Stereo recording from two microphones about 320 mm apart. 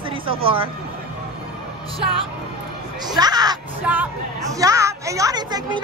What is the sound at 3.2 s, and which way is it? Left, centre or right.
Speech, centre.